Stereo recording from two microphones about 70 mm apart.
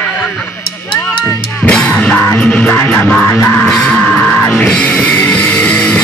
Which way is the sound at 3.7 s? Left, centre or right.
Centre.